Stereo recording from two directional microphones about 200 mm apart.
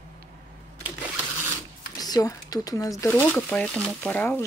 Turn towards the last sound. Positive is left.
turn(degrees=10)  # may be behind; listen again after turning